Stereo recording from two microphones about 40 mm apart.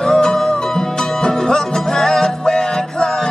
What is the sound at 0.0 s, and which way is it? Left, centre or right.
Music, centre.